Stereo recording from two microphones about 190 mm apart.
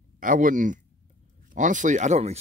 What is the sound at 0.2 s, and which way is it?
Speech, 45° right (ahead or behind).